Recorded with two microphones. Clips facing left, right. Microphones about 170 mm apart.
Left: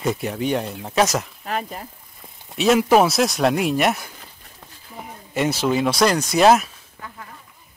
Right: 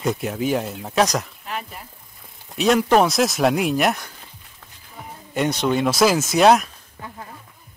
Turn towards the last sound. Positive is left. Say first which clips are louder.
# even
turn(degrees=0)  # may be behind; listen again after turning